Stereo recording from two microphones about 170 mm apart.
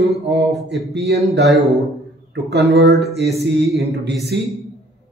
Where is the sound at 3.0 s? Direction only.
70° right (ahead or behind).